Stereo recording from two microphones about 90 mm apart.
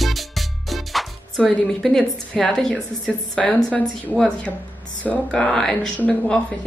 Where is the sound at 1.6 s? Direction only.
5° left (ahead or behind).